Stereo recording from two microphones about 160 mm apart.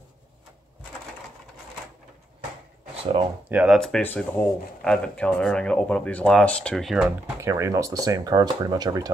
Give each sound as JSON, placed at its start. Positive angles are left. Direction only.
{"t": 3.4, "sound": "speech", "side_deg": -5}
{"t": 7.1, "sound": "speech", "side_deg": -20}